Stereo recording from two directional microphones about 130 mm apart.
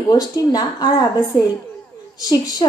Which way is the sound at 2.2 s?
30° left (ahead or behind).